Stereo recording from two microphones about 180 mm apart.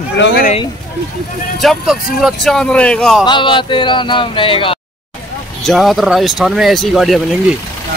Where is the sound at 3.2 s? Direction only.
25° left (ahead or behind).